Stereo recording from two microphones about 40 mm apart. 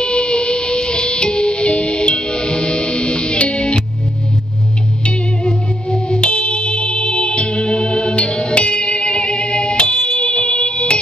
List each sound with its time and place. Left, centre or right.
0.0 s music: left
5.0 s music: left